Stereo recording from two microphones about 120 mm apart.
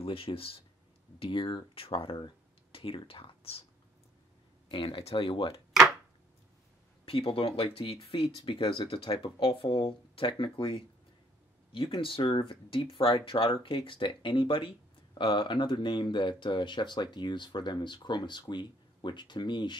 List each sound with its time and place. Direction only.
0.0 s speech: 50° left (ahead or behind)
4.6 s speech: 45° left (ahead or behind)
5.7 s chopping: 5° right (ahead or behind)
7.1 s speech: 50° left (ahead or behind)